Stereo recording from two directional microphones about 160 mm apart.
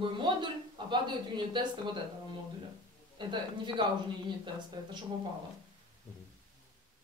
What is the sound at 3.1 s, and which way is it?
Speech, 30° right (ahead or behind).